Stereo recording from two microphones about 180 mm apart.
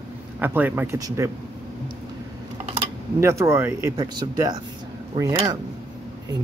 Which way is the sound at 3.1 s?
15° right (ahead or behind).